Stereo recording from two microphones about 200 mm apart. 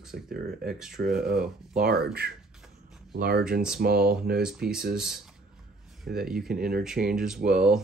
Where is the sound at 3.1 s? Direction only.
50° right (ahead or behind).